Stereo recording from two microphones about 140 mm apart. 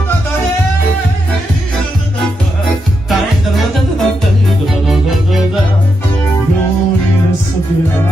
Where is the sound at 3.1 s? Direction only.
Centre (ahead or behind).